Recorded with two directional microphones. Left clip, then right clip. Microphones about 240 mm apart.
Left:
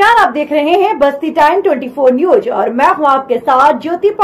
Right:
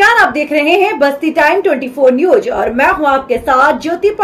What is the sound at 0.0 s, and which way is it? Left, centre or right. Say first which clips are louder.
A woman's voice: even; centre.